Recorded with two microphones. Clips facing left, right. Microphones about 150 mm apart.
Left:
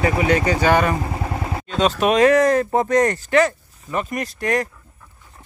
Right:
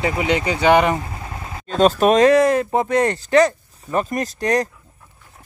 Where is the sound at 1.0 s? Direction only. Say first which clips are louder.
Left 7 dB; 40° left (ahead or behind).